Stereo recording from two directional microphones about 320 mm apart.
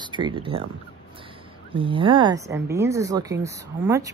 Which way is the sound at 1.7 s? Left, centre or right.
Centre.